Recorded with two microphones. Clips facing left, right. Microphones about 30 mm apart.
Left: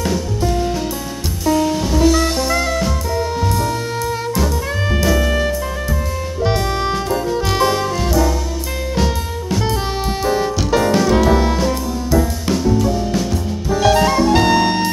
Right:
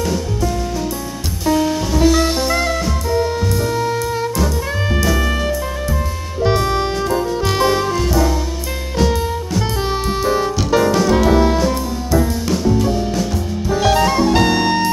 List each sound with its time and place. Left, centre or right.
1.5 s music: centre
11.1 s saxophone: centre
13.7 s music: centre